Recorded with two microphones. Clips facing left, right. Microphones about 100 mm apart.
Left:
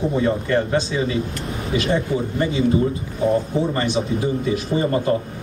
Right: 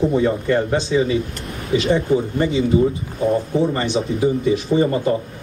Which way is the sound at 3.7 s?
20° right (ahead or behind).